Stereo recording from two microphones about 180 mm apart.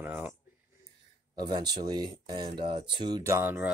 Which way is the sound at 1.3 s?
25° right (ahead or behind).